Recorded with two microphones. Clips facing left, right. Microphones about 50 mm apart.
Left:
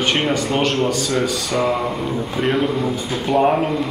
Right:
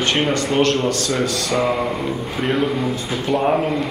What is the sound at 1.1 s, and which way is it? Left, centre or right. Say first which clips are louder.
Speech: even; centre.